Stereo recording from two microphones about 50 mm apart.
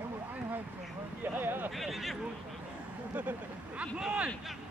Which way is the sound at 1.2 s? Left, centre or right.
Right.